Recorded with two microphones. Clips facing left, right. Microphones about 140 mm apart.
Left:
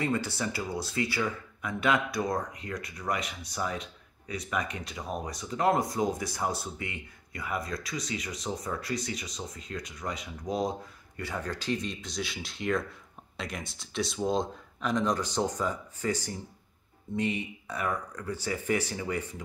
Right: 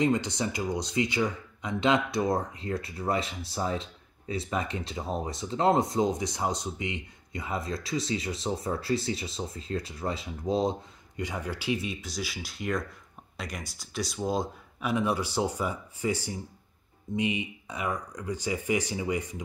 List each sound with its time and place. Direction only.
0.0 s speech: 20° right (ahead or behind)